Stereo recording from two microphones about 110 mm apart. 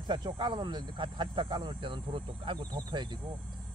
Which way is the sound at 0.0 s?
45° right (ahead or behind).